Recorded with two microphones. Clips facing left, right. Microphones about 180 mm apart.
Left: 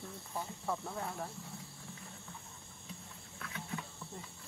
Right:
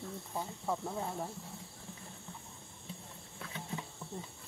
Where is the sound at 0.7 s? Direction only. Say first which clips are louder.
Right 3 dB; 15° right (ahead or behind).